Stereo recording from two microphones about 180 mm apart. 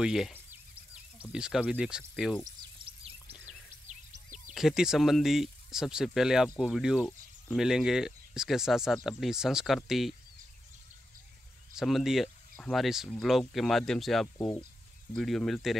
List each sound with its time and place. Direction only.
0.0 s speech: 5° right (ahead or behind)
2.4 s a sound: 30° right (ahead or behind)
3.8 s music: 45° right (ahead or behind)
4.6 s speech: 5° right (ahead or behind)
11.7 s speech: centre (ahead or behind)